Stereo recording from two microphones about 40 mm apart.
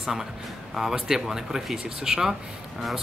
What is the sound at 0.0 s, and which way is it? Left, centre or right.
A man's voice, centre.